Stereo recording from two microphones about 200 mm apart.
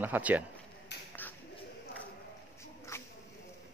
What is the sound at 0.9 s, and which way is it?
Finger snapping, 60° left (ahead or behind).